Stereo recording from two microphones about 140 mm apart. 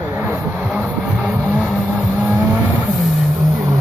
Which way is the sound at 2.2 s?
10° right (ahead or behind).